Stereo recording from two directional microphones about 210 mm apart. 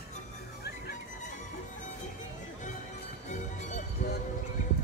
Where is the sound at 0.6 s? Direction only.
50° left (ahead or behind).